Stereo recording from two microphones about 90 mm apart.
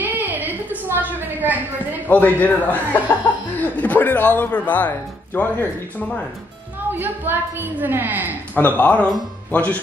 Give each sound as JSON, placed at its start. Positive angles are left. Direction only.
{"t": 0.0, "sound": "a sound", "side_deg": -20}
{"t": 2.0, "sound": "speech", "side_deg": 20}
{"t": 6.9, "sound": "a woman's voice", "side_deg": -20}
{"t": 8.5, "sound": "speech", "side_deg": 20}